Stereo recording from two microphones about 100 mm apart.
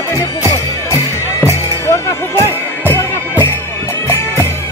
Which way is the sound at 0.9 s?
25° left (ahead or behind).